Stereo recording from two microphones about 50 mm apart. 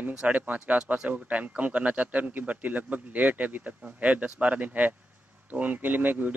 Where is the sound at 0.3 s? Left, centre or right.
Right.